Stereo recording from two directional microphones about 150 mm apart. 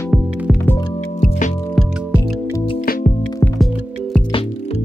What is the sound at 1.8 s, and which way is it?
Music, centre (ahead or behind).